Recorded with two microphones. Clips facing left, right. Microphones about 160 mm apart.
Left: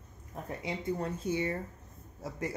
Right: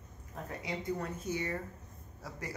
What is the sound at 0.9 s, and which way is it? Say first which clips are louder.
A woman's voice: left 4 dB; 30° left (ahead or behind).